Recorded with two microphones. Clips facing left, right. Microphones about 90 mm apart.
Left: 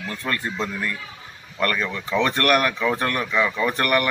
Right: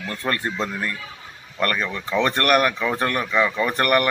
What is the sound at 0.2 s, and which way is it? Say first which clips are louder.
Speech: right 2 dB; 25° right (ahead or behind).